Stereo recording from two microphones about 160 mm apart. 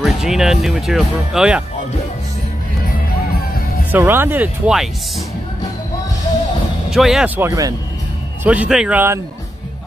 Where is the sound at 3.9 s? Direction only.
10° right (ahead or behind).